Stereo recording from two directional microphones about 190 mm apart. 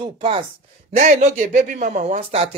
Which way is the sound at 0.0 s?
30° right (ahead or behind).